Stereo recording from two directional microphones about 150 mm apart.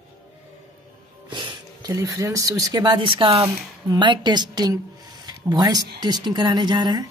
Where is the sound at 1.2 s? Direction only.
35° right (ahead or behind).